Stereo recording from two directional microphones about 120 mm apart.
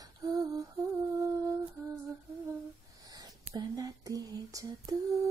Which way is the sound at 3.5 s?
30° right (ahead or behind).